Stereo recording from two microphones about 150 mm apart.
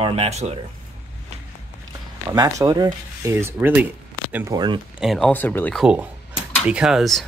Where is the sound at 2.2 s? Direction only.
20° right (ahead or behind).